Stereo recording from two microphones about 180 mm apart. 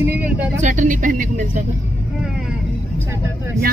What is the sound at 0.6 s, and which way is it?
A woman's voice, 45° right (ahead or behind).